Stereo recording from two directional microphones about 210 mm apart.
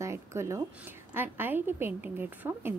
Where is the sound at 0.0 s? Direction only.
15° right (ahead or behind).